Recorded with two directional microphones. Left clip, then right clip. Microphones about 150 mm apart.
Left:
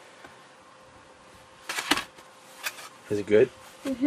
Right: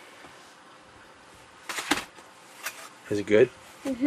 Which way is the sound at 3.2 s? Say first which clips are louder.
Even; 15° right (ahead or behind).